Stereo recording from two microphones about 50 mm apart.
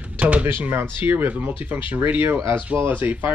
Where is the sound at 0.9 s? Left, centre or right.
Right.